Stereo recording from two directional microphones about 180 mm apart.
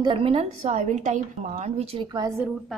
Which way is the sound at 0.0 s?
30° right (ahead or behind).